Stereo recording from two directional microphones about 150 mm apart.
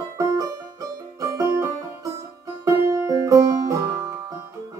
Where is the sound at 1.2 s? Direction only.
20° right (ahead or behind).